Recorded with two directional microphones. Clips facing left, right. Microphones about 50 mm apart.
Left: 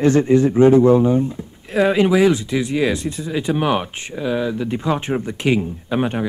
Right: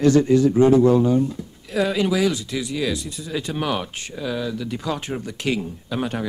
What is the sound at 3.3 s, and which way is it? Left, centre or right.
Speech, left.